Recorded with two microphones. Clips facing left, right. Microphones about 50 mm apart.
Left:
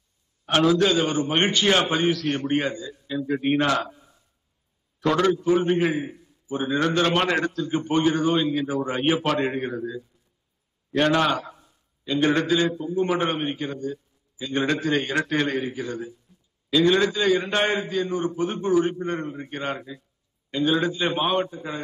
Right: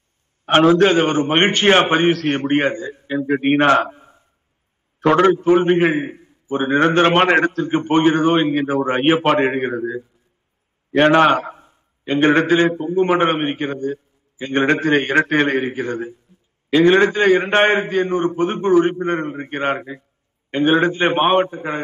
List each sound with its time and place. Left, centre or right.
0.5 s a man's voice: right